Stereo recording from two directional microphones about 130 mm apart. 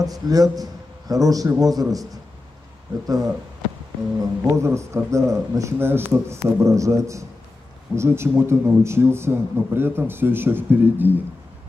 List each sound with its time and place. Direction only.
0.0 s a man's voice: 30° right (ahead or behind)
3.1 s a man's voice: 25° right (ahead or behind)